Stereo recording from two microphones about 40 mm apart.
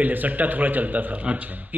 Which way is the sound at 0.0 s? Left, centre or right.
Right.